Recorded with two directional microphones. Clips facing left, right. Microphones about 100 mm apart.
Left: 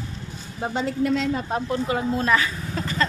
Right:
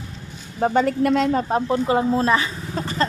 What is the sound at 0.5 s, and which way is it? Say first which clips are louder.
Speech: right 6 dB; 50° right (ahead or behind).